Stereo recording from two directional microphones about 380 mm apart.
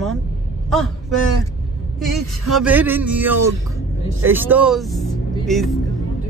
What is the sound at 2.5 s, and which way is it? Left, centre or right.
Speech, centre.